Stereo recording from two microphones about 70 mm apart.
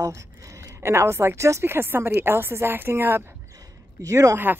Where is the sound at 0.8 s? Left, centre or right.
Right.